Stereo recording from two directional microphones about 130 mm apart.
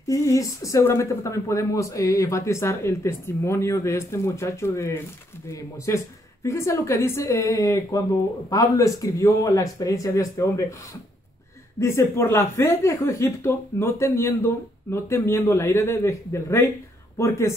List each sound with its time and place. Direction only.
0.0 s a woman's voice: 25° left (ahead or behind)
11.8 s a woman's voice: 20° left (ahead or behind)